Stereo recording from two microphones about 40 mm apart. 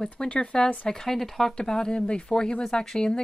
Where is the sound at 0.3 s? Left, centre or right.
Left.